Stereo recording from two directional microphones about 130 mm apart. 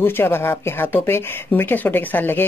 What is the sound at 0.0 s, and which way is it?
Speech, 15° left (ahead or behind).